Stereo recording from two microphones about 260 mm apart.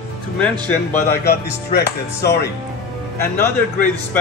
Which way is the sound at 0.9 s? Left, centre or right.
Left.